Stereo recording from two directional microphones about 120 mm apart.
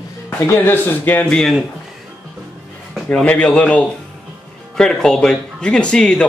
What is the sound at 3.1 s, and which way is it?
A man's voice, 10° left (ahead or behind).